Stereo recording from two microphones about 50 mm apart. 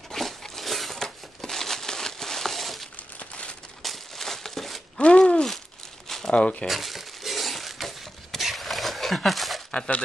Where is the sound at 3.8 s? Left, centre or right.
Centre.